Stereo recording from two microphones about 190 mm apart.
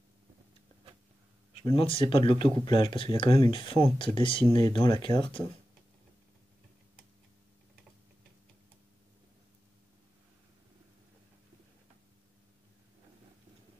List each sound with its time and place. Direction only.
1.6 s speech: 30° left (ahead or behind)